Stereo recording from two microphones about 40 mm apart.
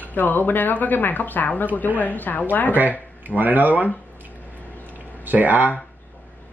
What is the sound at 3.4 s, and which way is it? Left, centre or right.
Speech, right.